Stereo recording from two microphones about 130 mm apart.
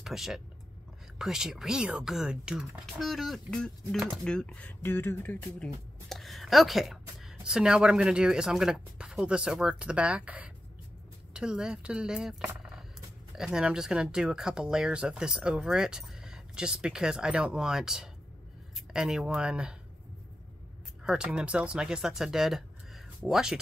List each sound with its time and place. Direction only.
0.0 s speech: centre (ahead or behind); by 5.7 s 15° left (ahead or behind)
6.0 s speech: centre (ahead or behind)
21.0 s speech: 5° right (ahead or behind)